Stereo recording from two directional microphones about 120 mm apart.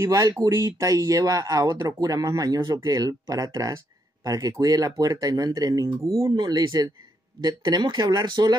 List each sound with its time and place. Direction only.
0.0 s speech: 30° right (ahead or behind)